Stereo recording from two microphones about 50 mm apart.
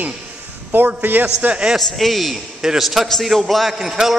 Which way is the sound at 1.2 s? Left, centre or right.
Right.